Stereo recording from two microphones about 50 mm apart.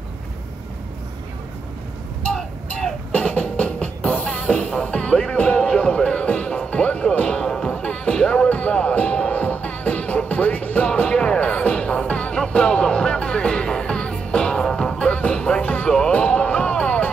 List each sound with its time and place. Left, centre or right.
3.1 s music: left
4.6 s music: left
8.4 s music: left
10.9 s music: centre
16.1 s a sound: left